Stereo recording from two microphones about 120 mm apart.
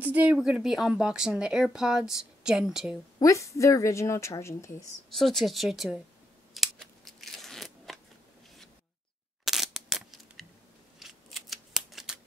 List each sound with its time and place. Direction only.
0.0 s speech: 15° right (ahead or behind)
3.2 s speech: 25° left (ahead or behind)
5.1 s speech: centre (ahead or behind)
6.5 s crunch: centre (ahead or behind)
9.4 s scissors: centre (ahead or behind)